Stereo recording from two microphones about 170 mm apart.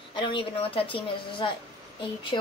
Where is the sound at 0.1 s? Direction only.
30° left (ahead or behind).